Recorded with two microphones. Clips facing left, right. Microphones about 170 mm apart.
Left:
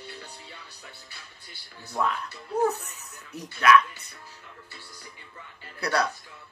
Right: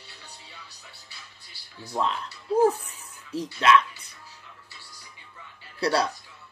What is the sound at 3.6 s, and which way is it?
Speech, 25° right (ahead or behind).